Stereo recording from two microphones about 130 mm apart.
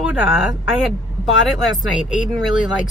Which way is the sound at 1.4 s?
Centre (ahead or behind).